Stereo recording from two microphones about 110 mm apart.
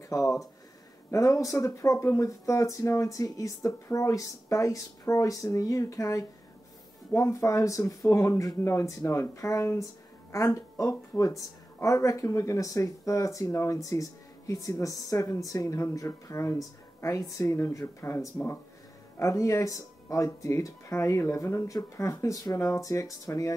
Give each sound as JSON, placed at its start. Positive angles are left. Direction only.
{"t": 0.1, "sound": "speech", "side_deg": 30}